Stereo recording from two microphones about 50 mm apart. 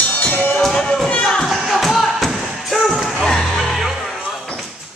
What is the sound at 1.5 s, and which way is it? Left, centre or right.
Music, centre.